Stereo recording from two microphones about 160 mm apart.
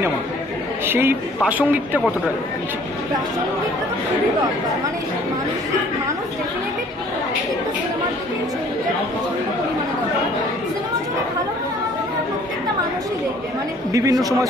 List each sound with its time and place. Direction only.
0.8 s a man's voice: 15° right (ahead or behind)